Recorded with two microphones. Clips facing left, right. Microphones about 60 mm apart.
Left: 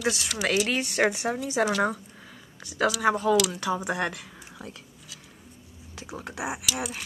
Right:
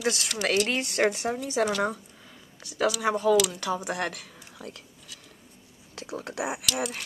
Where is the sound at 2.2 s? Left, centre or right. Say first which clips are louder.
Left 3 dB; centre.